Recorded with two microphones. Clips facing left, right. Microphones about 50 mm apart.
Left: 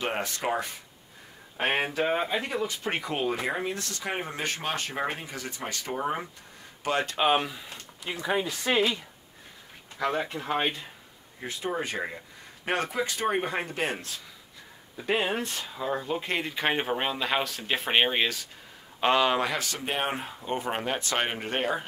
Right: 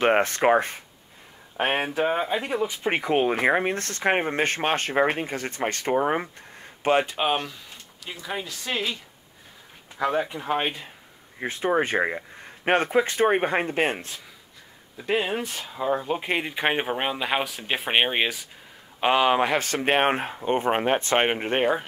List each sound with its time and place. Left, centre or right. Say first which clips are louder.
0.0 s speech: right 10 dB; right
1.8 s speech: right 2 dB; centre; by 7.1 s right
7.1 s speech: left 1 dB; centre
7.3 s speech: left 2 dB; centre
8.0 s speech: left 4 dB; left
9.9 s speech: right 4 dB; centre
11.3 s speech: right 8 dB; right
13.9 s speech: right 2 dB; right
15.0 s speech: right 2 dB; centre
15.4 s speech: right 4 dB; centre
19.5 s speech: right 8 dB; right